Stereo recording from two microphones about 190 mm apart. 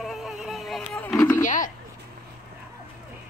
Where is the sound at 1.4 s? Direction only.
45° left (ahead or behind).